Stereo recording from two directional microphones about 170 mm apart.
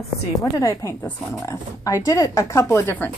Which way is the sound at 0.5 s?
20° left (ahead or behind).